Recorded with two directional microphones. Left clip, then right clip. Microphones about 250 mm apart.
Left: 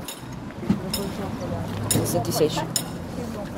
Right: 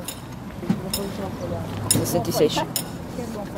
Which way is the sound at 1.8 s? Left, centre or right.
Centre.